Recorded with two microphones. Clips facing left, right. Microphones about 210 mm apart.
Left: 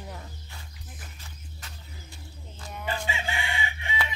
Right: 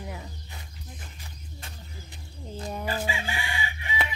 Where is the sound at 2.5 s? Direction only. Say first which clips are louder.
Right 3 dB; 35° right (ahead or behind).